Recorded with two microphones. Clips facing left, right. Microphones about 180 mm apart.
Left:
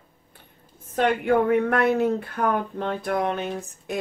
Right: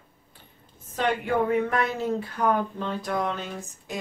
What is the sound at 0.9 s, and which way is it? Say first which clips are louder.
A woman's voice: left 4 dB; 55° left (ahead or behind).